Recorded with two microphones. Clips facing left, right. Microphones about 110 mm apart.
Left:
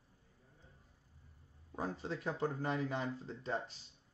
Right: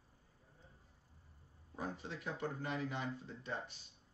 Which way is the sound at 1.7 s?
35° left (ahead or behind).